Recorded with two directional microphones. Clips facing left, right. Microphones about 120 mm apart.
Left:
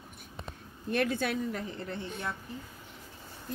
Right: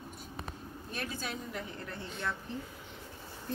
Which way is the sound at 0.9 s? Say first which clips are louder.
Left 10 dB; 65° left (ahead or behind).